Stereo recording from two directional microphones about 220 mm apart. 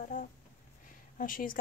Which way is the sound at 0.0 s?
35° left (ahead or behind).